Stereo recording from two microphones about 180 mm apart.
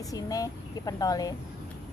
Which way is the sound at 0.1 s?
20° left (ahead or behind).